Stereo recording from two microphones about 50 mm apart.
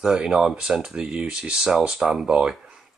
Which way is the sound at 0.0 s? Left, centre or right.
Centre.